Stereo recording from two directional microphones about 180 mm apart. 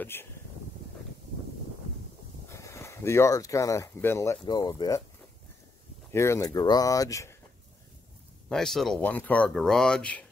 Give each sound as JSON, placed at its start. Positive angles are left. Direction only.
{"t": 0.0, "sound": "speech", "side_deg": 10}
{"t": 2.5, "sound": "speech", "side_deg": 15}
{"t": 6.1, "sound": "speech", "side_deg": 15}
{"t": 8.5, "sound": "speech", "side_deg": 0}